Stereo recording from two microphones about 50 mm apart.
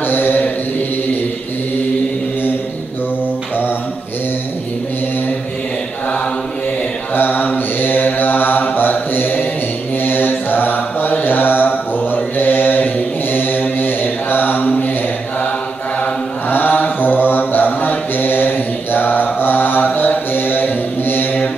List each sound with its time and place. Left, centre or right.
0.0 s mantra: left
7.2 s mantra: left
16.4 s mantra: left